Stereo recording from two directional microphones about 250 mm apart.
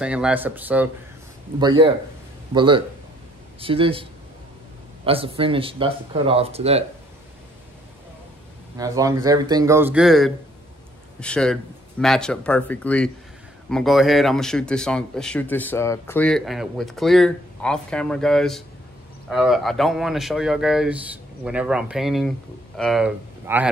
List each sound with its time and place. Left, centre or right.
0.0 s speech: centre
1.6 s speech: centre
8.7 s speech: centre